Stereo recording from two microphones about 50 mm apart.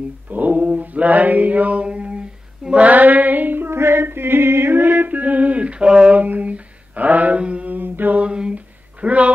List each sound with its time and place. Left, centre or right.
0.3 s mantra: right
2.6 s female singing: right
7.7 s mantra: right
8.2 s a sound: right